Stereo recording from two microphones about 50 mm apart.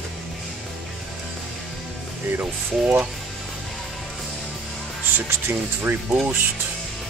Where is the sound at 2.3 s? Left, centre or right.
Right.